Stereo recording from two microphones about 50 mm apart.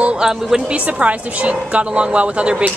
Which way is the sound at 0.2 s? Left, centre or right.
Centre.